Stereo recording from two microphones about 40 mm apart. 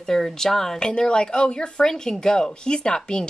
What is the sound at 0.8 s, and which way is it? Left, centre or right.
Speech, left.